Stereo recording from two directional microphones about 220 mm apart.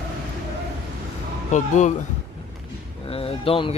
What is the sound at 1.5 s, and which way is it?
Speech, 35° left (ahead or behind).